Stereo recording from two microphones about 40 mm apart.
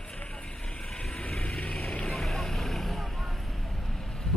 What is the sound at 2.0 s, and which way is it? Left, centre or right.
Vehicle, centre.